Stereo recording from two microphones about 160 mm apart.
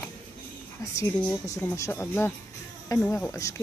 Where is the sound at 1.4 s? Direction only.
20° left (ahead or behind).